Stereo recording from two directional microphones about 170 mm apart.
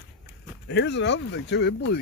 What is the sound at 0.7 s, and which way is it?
Speech, 90° left.